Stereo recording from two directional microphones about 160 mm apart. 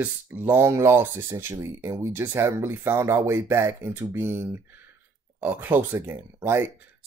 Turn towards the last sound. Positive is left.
turn(degrees=-15)  # may be behind; listen again after turning